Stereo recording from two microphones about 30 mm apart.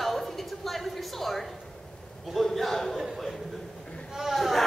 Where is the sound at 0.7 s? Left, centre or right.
Centre.